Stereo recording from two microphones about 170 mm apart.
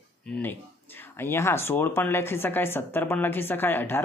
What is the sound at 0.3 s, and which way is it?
A man's voice, 10° left (ahead or behind).